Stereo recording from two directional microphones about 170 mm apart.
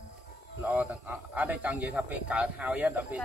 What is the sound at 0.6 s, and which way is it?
A man's voice, 10° right (ahead or behind).